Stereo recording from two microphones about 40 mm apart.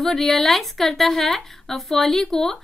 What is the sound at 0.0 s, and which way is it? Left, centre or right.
A woman's voice, centre.